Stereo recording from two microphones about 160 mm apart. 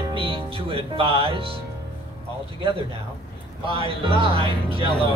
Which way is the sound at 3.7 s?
35° right (ahead or behind).